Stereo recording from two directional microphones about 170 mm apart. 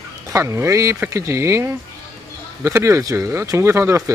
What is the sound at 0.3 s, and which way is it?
Speech, 15° right (ahead or behind).